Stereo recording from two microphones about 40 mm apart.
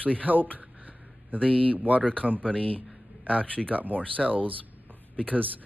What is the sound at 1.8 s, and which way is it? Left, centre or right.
Speech, right.